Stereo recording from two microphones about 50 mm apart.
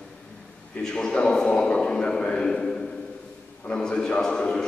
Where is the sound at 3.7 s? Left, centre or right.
Centre.